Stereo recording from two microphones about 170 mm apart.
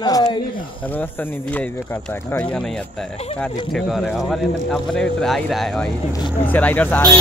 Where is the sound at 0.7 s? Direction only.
10° left (ahead or behind).